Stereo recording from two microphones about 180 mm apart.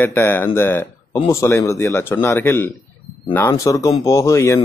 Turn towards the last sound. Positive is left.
turn(degrees=15)  # may be behind; listen again after turning